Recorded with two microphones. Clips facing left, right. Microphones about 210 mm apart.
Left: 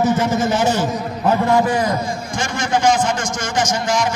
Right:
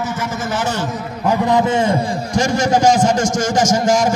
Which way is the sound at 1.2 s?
15° right (ahead or behind).